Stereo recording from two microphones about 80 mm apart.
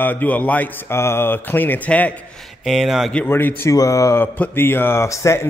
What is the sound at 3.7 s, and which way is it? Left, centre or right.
A man's voice, left.